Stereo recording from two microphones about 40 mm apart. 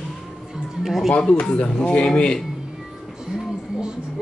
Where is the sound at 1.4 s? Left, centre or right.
Left.